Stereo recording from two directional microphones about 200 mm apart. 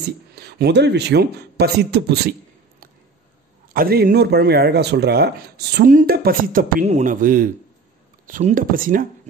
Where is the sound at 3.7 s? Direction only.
50° right (ahead or behind).